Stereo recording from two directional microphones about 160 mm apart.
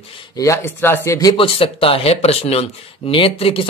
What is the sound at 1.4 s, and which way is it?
Speech, 35° left (ahead or behind).